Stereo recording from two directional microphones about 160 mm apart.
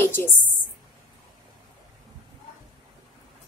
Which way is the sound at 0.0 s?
15° left (ahead or behind).